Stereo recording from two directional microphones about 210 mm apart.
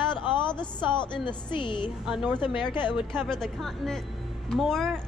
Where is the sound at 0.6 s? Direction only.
20° left (ahead or behind).